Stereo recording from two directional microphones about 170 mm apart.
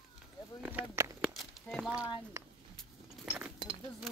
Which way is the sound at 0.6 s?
10° right (ahead or behind).